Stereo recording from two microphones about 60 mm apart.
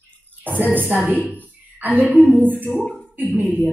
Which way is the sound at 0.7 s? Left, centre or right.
Right.